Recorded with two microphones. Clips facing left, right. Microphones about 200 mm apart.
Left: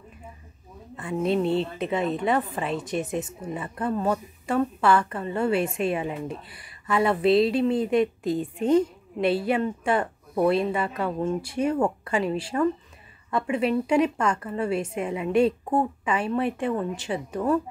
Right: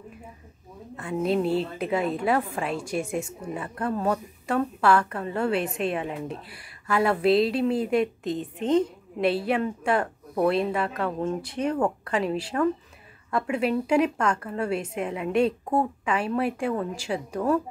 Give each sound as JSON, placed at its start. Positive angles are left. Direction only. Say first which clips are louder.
{"t": 0.9, "sound": "a woman's voice", "louder": "even", "side_deg": 0}